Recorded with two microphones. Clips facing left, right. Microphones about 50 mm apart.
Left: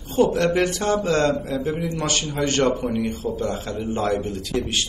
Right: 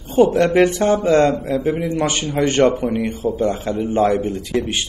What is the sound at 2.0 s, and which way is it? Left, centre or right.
A man's voice, right.